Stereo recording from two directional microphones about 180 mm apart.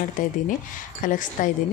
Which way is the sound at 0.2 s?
45° left (ahead or behind).